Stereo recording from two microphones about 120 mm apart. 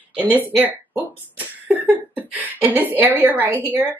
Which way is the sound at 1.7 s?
15° right (ahead or behind).